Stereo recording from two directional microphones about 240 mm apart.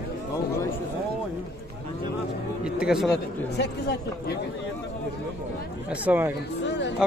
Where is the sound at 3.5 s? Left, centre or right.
Left.